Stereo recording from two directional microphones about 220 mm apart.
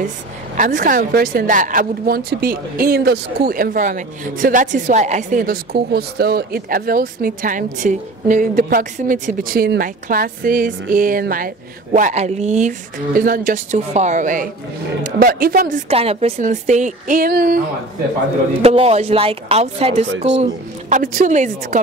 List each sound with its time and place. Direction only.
0.6 s speech: 35° right (ahead or behind)
15.9 s speech: 25° right (ahead or behind); by 17.6 s 45° right (ahead or behind)
18.6 s speech: 25° right (ahead or behind)